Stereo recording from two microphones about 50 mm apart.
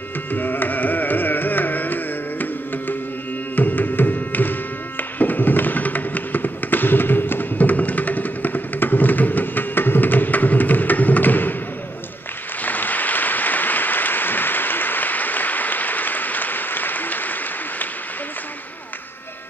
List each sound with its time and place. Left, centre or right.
0.3 s carnatic music: left
3.5 s music: left
12.6 s applause: left